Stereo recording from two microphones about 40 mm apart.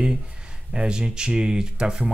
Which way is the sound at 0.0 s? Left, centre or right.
Right.